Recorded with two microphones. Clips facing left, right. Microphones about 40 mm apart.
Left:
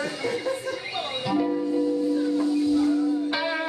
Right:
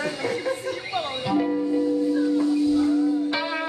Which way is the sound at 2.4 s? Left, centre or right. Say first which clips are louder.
Right 2 dB; centre.